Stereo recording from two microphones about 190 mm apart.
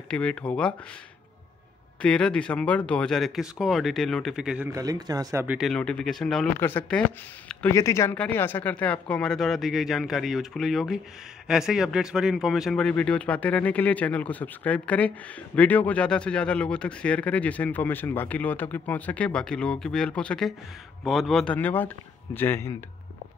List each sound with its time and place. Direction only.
0.1 s speech: 5° left (ahead or behind)
2.0 s speech: 5° left (ahead or behind)
4.7 s speech: 20° right (ahead or behind)
5.6 s speech: 5° left (ahead or behind)